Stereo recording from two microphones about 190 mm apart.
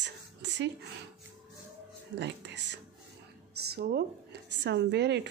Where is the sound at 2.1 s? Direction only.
65° right (ahead or behind).